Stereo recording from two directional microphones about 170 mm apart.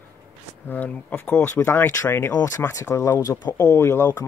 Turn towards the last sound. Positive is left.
turn(degrees=15)  # may be behind; listen again after turning